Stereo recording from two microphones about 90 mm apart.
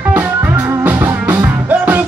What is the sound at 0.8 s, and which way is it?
Music, 20° right (ahead or behind).